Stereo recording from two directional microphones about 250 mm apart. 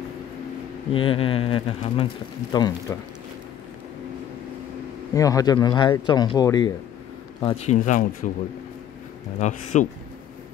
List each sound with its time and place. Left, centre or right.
0.9 s speech: left
5.1 s speech: centre
7.4 s speech: left
9.4 s speech: left